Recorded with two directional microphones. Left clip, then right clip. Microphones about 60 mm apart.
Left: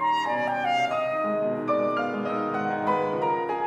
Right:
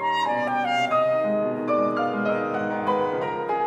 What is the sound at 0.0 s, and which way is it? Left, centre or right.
Clarinet, right.